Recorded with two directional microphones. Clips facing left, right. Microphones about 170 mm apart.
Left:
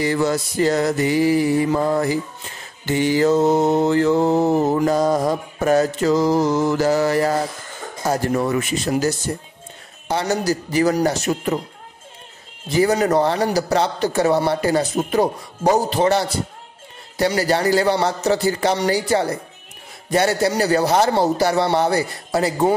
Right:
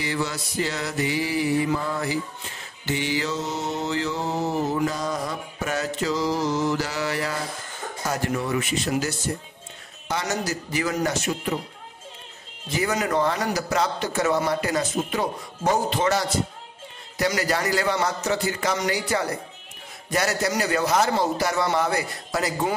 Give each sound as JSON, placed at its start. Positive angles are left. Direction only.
{"t": 0.0, "sound": "mantra", "side_deg": 45}
{"t": 8.1, "sound": "a man's voice", "side_deg": 40}
{"t": 12.8, "sound": "a man's voice", "side_deg": 35}